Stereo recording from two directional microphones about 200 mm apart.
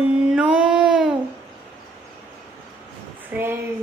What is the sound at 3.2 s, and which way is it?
Speech, 10° right (ahead or behind).